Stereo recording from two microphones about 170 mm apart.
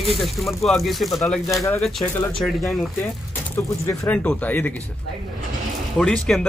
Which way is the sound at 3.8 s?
10° left (ahead or behind).